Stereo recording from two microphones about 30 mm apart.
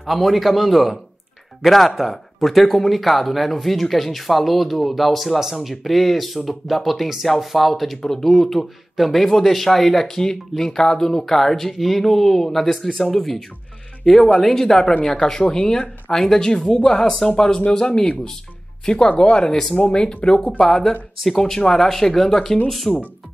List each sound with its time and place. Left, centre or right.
0.0 s speech: centre
5.4 s speech: centre
8.0 s speech: centre
15.3 s speech: left
16.1 s speech: centre; by 20.2 s left
20.5 s speech: centre